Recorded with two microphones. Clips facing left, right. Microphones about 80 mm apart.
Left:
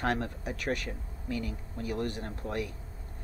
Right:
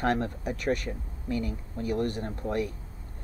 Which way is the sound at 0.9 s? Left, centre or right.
Centre.